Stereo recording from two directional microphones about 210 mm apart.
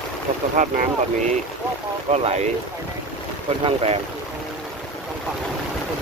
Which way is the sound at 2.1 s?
30° right (ahead or behind).